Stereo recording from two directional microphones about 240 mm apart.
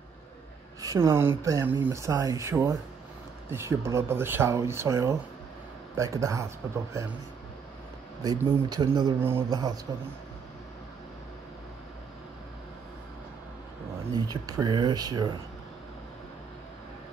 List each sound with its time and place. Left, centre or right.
0.7 s speech: centre
8.2 s speech: centre
14.1 s speech: centre